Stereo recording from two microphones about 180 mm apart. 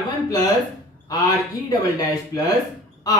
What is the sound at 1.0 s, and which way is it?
Speech, 20° left (ahead or behind).